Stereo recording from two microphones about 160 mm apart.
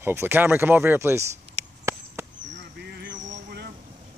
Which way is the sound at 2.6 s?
85° right.